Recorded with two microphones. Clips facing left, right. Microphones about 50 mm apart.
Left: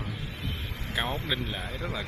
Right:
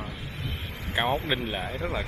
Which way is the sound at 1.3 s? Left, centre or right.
Right.